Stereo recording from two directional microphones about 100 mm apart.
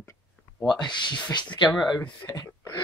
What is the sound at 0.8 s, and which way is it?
Speech, 50° left (ahead or behind).